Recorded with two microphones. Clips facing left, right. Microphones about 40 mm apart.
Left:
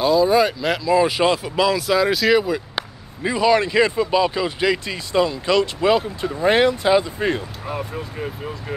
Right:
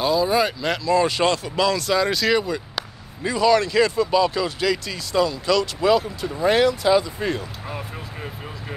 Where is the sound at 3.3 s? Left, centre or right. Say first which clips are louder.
Left 1 dB; centre.